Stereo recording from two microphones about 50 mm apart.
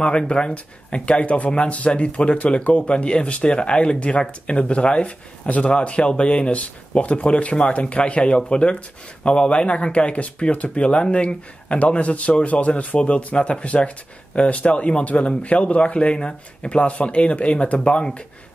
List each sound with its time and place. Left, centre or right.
0.3 s speech: centre